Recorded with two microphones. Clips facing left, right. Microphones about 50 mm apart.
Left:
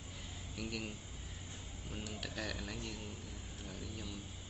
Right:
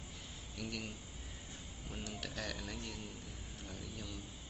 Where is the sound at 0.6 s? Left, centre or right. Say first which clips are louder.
Left 1 dB; centre.